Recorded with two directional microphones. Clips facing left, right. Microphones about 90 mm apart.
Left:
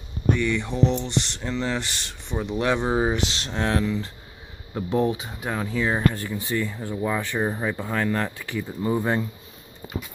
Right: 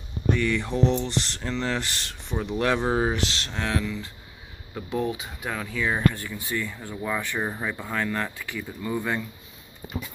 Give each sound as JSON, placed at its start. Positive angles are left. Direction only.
{"t": 0.3, "sound": "speech", "side_deg": 5}
{"t": 3.3, "sound": "speech", "side_deg": 25}
{"t": 7.3, "sound": "speech", "side_deg": 5}
{"t": 7.6, "sound": "speech", "side_deg": 35}